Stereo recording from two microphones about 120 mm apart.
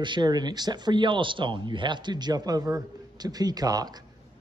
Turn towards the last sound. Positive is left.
turn(degrees=-35)  # may be behind; listen again after turning